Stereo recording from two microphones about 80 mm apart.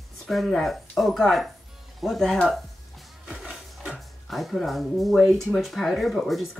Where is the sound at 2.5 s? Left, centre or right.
Centre.